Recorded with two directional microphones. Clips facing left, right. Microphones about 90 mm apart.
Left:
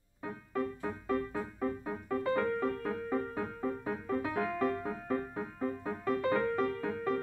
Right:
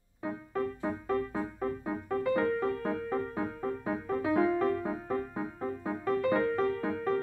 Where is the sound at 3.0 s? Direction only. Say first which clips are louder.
Right 2 dB; centre (ahead or behind).